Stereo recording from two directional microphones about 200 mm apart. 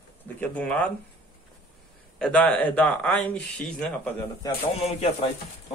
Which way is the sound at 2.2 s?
5° left (ahead or behind).